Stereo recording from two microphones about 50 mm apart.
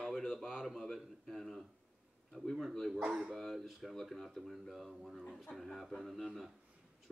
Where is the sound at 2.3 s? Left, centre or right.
Centre.